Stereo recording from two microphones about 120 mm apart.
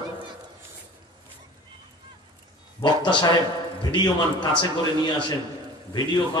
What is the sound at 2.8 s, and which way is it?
Speech, 40° left (ahead or behind).